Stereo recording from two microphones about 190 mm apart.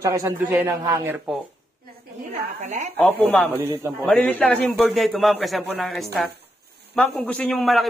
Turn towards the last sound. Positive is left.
turn(degrees=0)  # may be behind; listen again after turning